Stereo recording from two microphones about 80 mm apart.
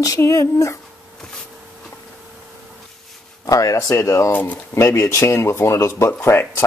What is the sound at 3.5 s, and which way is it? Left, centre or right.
Speech, left.